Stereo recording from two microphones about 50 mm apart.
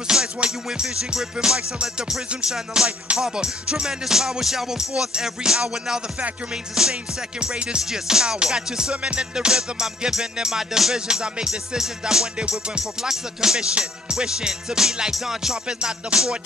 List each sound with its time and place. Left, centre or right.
0.1 s music: centre